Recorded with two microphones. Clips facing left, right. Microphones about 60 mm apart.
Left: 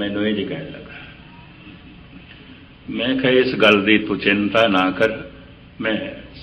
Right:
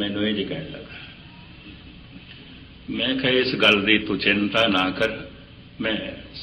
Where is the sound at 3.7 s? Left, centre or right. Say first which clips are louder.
Left 5 dB; centre.